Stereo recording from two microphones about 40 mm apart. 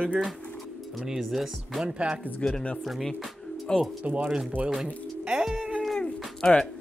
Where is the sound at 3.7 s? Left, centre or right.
Left.